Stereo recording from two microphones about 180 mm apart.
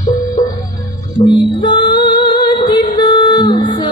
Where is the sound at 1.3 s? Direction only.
25° left (ahead or behind).